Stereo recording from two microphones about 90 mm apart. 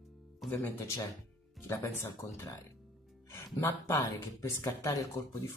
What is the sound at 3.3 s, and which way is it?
Speech, 30° left (ahead or behind).